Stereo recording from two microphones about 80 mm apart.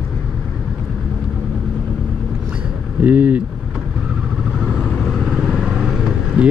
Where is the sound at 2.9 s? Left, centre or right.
Centre.